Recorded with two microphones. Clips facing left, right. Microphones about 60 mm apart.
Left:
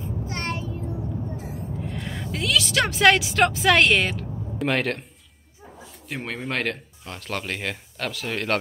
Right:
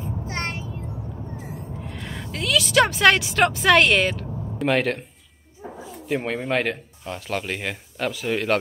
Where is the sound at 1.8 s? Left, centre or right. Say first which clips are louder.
Left 2 dB; centre.